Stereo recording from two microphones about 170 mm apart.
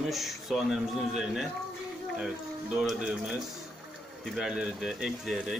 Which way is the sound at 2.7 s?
5° right (ahead or behind).